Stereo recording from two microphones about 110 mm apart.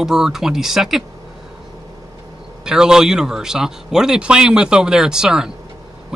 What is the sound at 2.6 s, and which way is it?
A man's voice, 5° right (ahead or behind).